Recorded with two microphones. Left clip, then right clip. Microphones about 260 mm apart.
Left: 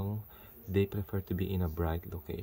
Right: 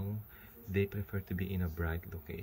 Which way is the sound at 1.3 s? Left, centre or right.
Centre.